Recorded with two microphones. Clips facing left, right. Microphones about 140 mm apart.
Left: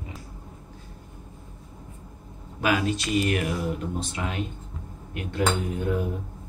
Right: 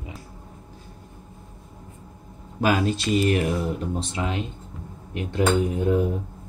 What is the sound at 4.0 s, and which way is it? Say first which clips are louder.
A man's voice: right 3 dB; 25° right (ahead or behind).